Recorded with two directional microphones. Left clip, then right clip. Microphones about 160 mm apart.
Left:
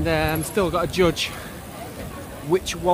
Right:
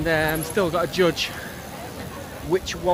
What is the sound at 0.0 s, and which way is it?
Speech, 15° left (ahead or behind).